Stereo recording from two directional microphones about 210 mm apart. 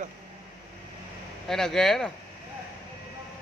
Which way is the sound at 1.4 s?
Centre (ahead or behind).